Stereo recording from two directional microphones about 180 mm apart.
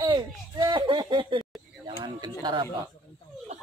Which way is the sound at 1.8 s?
25° right (ahead or behind).